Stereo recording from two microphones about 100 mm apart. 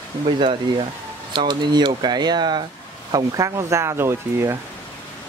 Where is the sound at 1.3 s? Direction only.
50° right (ahead or behind).